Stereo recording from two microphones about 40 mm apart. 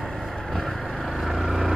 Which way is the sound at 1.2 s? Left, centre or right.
Centre.